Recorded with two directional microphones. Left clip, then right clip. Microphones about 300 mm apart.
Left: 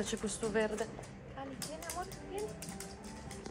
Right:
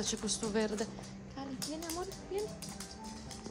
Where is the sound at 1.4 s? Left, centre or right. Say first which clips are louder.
Right 2 dB; centre.